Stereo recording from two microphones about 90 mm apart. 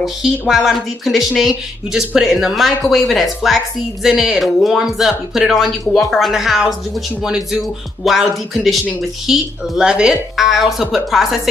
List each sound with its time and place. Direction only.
0.0 s speech: 5° right (ahead or behind)